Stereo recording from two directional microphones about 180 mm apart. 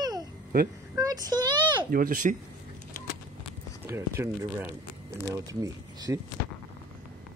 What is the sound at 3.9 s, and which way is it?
Speech, 15° right (ahead or behind).